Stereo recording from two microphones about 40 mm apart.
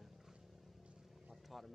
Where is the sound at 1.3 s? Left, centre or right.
Centre.